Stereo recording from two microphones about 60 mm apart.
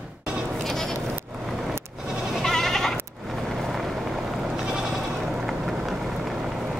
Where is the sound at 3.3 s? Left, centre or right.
Centre.